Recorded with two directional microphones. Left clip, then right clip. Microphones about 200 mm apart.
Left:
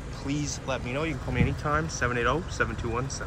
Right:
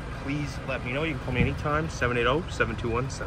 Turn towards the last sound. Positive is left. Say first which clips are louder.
# right 2 dB
turn(degrees=0)  # may be behind; listen again after turning